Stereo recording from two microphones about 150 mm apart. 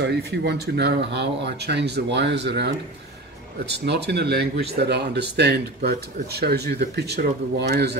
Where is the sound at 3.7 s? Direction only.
90° right.